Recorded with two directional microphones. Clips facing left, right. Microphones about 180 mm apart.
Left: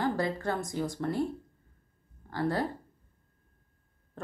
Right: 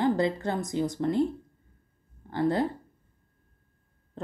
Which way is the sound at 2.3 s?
20° right (ahead or behind).